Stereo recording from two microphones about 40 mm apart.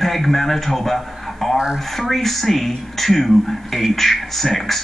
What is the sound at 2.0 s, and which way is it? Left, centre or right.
Speech, centre.